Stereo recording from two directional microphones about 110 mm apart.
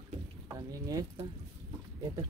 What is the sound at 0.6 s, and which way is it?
Speech, 30° right (ahead or behind).